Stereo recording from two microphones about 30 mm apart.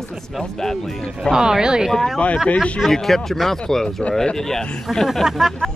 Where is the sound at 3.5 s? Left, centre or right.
Centre.